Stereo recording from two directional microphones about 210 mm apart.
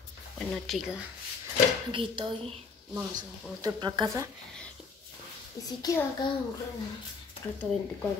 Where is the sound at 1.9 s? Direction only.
25° right (ahead or behind).